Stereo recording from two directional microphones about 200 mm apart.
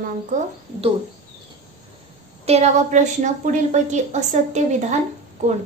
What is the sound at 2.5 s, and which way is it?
A woman's voice, 35° right (ahead or behind).